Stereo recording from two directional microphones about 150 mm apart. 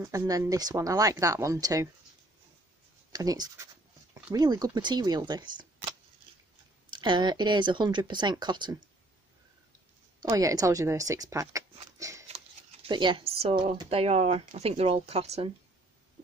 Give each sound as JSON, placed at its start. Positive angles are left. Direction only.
{"t": 0.0, "sound": "speech", "side_deg": -20}
{"t": 3.1, "sound": "speech", "side_deg": -25}
{"t": 10.3, "sound": "speech", "side_deg": -25}
{"t": 12.0, "sound": "a sound", "side_deg": -20}
{"t": 12.8, "sound": "speech", "side_deg": -35}